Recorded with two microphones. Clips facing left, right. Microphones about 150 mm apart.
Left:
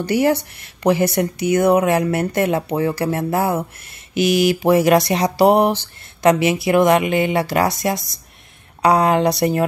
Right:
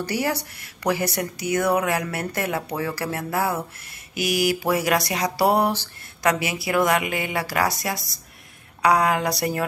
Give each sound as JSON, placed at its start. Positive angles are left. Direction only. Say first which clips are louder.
{"t": 0.0, "sound": "speech", "louder": "left 8 dB", "side_deg": 20}